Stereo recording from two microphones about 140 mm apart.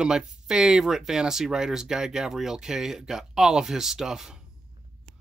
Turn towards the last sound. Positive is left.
turn(degrees=-5)  # may be behind; listen again after turning